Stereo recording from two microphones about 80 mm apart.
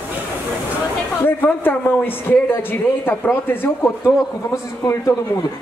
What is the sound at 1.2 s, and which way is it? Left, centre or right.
Speech, left.